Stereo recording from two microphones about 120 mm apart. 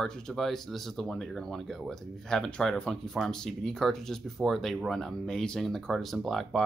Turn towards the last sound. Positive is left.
turn(degrees=0)  # may be behind; listen again after turning